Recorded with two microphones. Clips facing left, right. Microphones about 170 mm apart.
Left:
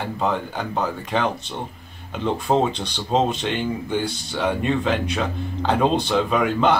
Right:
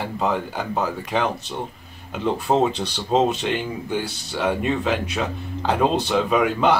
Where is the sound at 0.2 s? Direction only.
5° right (ahead or behind).